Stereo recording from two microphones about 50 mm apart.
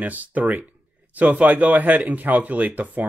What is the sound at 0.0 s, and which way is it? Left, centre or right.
Speech, right.